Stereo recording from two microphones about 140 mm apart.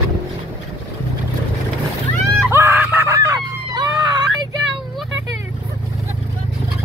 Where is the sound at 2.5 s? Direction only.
15° right (ahead or behind).